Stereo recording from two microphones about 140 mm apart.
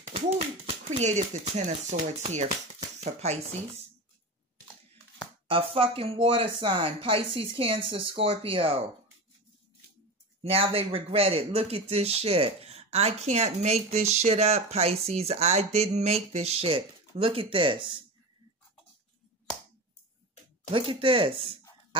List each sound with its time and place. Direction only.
0.1 s a sound: 50° right (ahead or behind)
0.8 s speech: 55° right (ahead or behind)
5.5 s speech: 40° right (ahead or behind)
10.5 s speech: 45° right (ahead or behind)
20.7 s speech: 40° right (ahead or behind)